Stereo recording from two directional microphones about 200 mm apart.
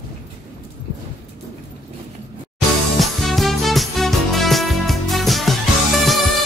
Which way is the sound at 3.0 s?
Centre (ahead or behind).